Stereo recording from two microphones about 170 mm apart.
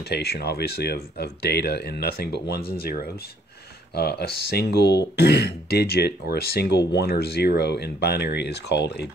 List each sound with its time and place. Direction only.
0.0 s speech: 70° left (ahead or behind)